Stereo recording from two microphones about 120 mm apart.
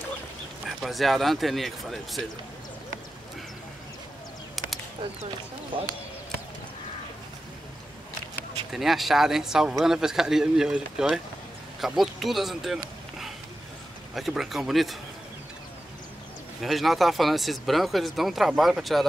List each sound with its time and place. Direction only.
0.7 s speech: centre (ahead or behind)
5.7 s speech: 45° right (ahead or behind)
8.7 s speech: centre (ahead or behind)
14.1 s speech: centre (ahead or behind)
16.6 s speech: centre (ahead or behind)